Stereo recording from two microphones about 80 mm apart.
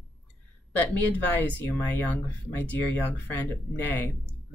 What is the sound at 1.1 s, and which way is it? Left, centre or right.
Speech, left.